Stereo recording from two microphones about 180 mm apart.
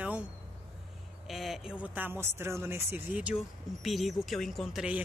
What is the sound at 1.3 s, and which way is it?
Speech, centre (ahead or behind).